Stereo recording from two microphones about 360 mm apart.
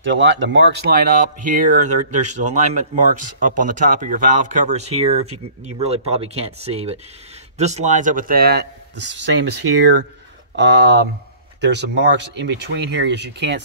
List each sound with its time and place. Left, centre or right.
0.0 s speech: right